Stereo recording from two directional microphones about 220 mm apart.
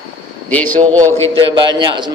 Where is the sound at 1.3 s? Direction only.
20° right (ahead or behind).